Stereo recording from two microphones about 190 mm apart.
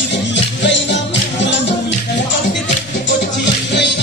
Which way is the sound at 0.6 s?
70° left (ahead or behind).